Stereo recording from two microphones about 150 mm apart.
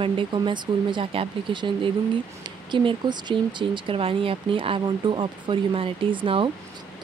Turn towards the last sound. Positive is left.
turn(degrees=-35)  # may be behind; listen again after turning